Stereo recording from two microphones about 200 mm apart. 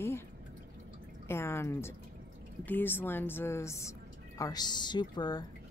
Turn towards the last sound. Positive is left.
turn(degrees=20)  # may be behind; listen again after turning